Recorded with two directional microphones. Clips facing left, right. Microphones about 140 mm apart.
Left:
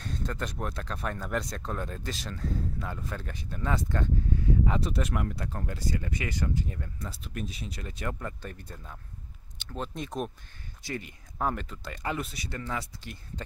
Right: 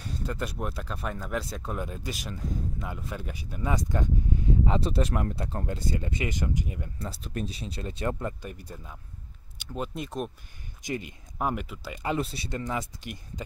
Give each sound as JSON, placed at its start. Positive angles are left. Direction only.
{"t": 0.0, "sound": "speech", "side_deg": -10}
{"t": 4.6, "sound": "speech", "side_deg": -30}
{"t": 7.0, "sound": "speech", "side_deg": -35}
{"t": 10.8, "sound": "speech", "side_deg": -20}
{"t": 12.2, "sound": "speech", "side_deg": -30}
{"t": 12.4, "sound": "speech", "side_deg": -20}